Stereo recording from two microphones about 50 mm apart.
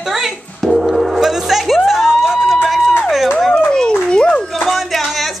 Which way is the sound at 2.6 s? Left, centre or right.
Centre.